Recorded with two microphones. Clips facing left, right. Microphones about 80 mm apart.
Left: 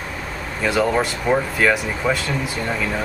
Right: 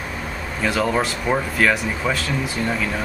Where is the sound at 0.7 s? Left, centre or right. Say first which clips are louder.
Left 2 dB; centre.